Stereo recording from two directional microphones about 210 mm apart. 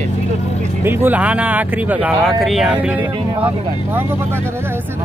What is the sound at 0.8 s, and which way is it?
Speech, 10° right (ahead or behind).